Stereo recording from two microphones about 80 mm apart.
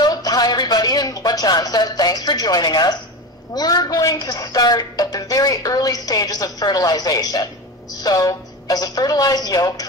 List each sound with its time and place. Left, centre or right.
0.0 s a woman's voice: left